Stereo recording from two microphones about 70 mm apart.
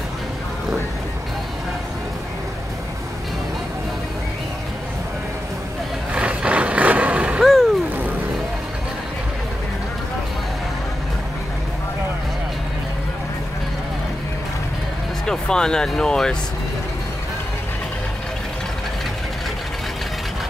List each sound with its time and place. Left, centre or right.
6.1 s vehicle: centre
7.4 s vehicle: centre
15.2 s speech: centre